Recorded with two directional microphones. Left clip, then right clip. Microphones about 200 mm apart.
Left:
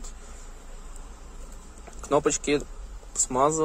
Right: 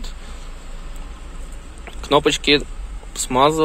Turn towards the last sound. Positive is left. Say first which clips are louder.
# right 8 dB
turn(degrees=10)  # may be behind; listen again after turning